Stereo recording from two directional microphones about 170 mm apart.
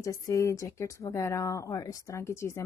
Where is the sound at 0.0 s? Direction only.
20° left (ahead or behind).